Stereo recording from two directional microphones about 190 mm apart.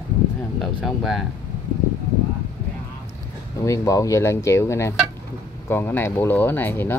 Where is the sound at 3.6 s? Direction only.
15° left (ahead or behind).